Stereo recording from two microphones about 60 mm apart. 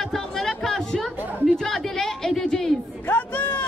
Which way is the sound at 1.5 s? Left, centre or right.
Centre.